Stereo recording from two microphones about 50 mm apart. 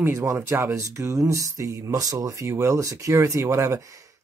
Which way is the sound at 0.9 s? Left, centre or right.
Right.